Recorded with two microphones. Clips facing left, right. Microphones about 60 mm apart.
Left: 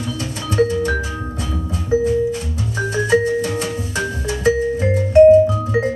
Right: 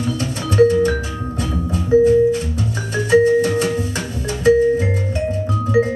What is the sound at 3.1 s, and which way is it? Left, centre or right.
Music, right.